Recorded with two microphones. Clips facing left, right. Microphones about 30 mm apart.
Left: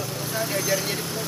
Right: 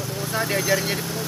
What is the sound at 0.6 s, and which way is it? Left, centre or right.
Speech, centre.